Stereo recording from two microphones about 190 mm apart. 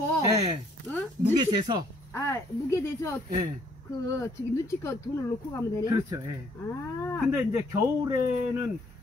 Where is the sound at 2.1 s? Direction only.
15° left (ahead or behind).